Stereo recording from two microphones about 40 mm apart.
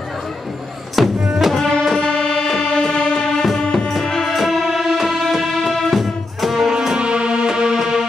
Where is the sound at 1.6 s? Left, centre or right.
Centre.